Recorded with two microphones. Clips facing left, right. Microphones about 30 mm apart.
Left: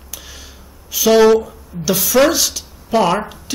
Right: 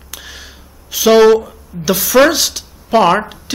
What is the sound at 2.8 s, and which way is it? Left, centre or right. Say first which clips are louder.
Speech: right 4 dB; right.